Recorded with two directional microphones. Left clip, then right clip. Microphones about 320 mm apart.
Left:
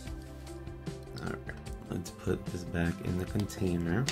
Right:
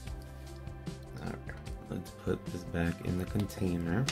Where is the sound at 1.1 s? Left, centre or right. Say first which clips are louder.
Left 3 dB; centre.